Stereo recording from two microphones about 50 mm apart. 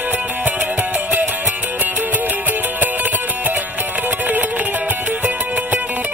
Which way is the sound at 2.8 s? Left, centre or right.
Right.